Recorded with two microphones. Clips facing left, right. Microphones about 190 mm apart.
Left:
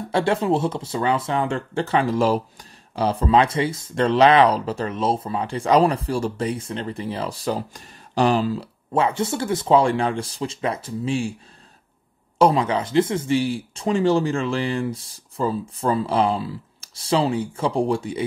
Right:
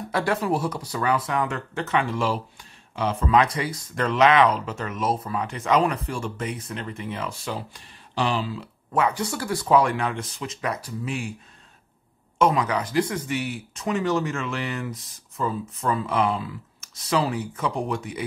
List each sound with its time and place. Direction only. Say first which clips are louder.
0.1 s speech: left 4 dB; 25° left (ahead or behind); by 8.6 s 45° left (ahead or behind)
8.9 s speech: left 3 dB; 25° left (ahead or behind)
12.4 s speech: left 4 dB; 30° left (ahead or behind)